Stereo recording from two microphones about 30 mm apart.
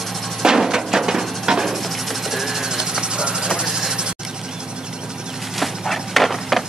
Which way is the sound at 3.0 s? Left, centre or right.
Right.